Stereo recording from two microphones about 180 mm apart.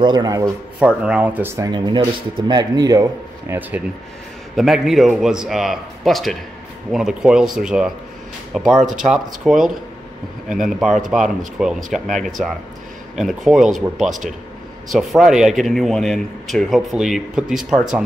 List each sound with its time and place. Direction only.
0.0 s a man's voice: 25° right (ahead or behind)
0.7 s speech: 5° right (ahead or behind)
4.6 s speech: centre (ahead or behind)